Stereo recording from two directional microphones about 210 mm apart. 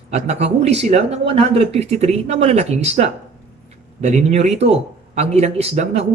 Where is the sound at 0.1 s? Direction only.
30° right (ahead or behind).